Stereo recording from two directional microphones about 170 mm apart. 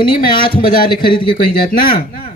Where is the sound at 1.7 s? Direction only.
60° left (ahead or behind).